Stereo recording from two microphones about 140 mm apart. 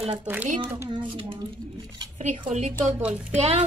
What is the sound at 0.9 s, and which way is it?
Speech, 40° right (ahead or behind).